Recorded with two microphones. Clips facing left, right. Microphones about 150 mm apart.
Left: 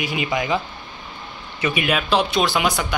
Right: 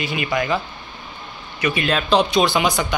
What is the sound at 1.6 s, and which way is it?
Speech, 20° left (ahead or behind).